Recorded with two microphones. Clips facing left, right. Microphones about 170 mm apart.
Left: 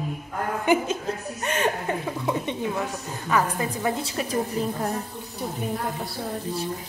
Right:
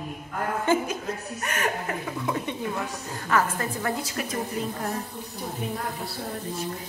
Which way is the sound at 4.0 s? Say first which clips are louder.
Left 2 dB; 30° left (ahead or behind).